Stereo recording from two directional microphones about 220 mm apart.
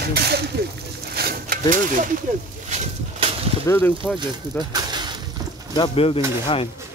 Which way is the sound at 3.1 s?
25° right (ahead or behind).